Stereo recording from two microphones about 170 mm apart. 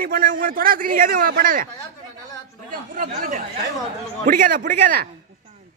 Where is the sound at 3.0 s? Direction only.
50° right (ahead or behind).